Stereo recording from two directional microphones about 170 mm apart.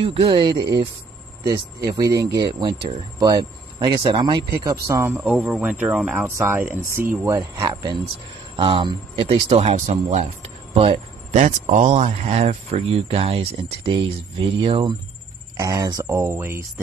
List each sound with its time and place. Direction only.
0.0 s speech: 30° right (ahead or behind)
1.9 s speech: 20° right (ahead or behind)